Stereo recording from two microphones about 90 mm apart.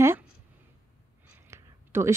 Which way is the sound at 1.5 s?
30° right (ahead or behind).